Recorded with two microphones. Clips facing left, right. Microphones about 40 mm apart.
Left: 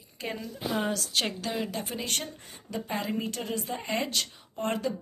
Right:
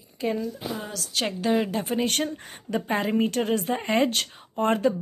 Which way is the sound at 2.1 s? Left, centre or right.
Right.